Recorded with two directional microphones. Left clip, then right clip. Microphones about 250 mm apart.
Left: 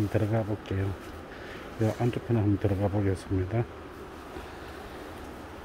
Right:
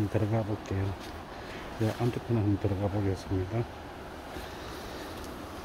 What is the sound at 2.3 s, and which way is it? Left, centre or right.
Speech, centre.